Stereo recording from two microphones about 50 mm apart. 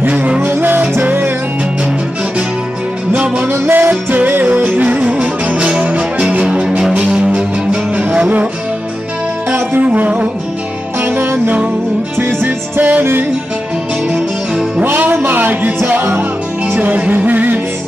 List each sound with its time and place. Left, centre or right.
0.1 s music: right
3.4 s music: right
4.9 s music: centre
9.8 s music: right
11.0 s music: right
14.8 s music: right